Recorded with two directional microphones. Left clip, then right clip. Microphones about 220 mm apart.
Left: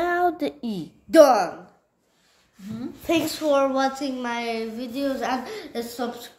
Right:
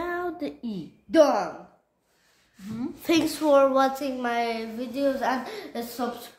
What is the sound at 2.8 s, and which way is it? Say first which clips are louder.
A woman's voice: even; 10° right (ahead or behind).